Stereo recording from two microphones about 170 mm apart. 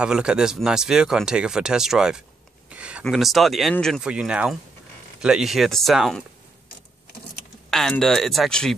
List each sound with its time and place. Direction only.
0.0 s speech: 5° right (ahead or behind)
2.7 s a sound: 5° right (ahead or behind)
3.1 s speech: centre (ahead or behind)
7.7 s speech: 5° left (ahead or behind)